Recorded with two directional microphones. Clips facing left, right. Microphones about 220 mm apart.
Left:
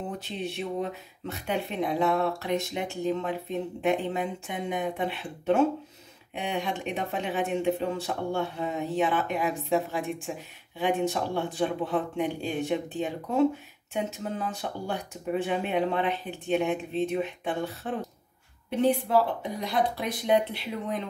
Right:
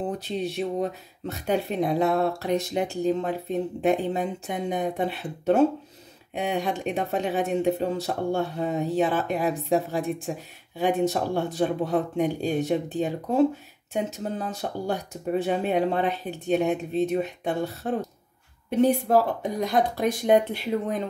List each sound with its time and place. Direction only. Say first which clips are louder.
0.4 s speech: right 4 dB; 40° right (ahead or behind)